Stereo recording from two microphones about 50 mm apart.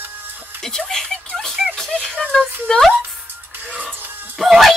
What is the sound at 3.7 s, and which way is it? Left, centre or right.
Music, centre.